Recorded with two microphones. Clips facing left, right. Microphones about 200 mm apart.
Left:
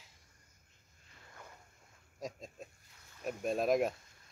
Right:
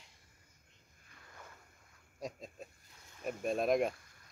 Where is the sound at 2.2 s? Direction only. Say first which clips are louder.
Even; centre (ahead or behind).